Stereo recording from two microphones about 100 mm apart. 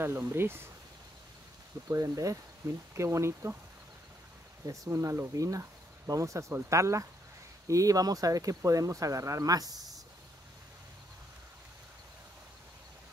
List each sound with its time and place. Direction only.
0.0 s speech: 25° right (ahead or behind)
1.9 s speech: 35° right (ahead or behind)
4.6 s speech: 30° right (ahead or behind)